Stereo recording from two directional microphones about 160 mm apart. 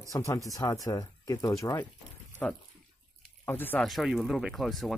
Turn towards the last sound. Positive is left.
turn(degrees=0)  # may be behind; listen again after turning